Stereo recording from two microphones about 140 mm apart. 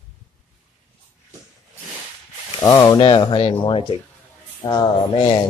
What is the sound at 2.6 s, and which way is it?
Speech, 25° left (ahead or behind).